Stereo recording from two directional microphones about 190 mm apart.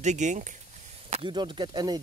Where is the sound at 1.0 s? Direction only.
35° right (ahead or behind).